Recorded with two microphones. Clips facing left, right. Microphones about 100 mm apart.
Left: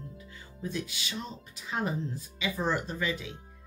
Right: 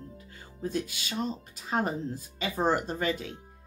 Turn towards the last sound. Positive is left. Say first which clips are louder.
# right 3 dB
turn(degrees=-45)  # may be behind; listen again after turning